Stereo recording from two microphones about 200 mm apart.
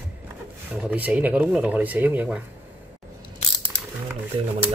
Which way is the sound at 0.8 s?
5° right (ahead or behind).